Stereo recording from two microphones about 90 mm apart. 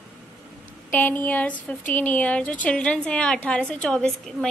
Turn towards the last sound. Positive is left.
turn(degrees=10)  # may be behind; listen again after turning